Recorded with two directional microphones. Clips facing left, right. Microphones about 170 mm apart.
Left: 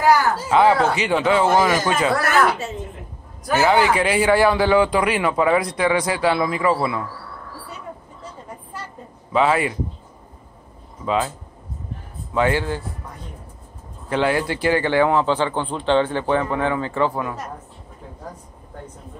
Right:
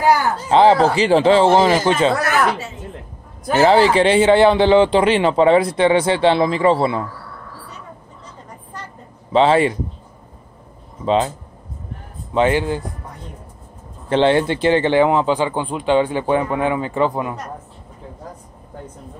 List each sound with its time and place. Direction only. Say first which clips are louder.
0.5 s a man's voice: right 4 dB; 30° right (ahead or behind)
3.4 s a man's voice: right 4 dB; 30° right (ahead or behind)
9.3 s a man's voice: right 5 dB; 30° right (ahead or behind)
11.1 s a man's voice: right 5 dB; 25° right (ahead or behind)
12.4 s a man's voice: right 3 dB; 20° right (ahead or behind)
14.0 s speech: right 5 dB; 30° right (ahead or behind)